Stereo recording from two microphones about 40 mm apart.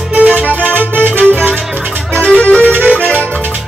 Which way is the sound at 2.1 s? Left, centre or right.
Left.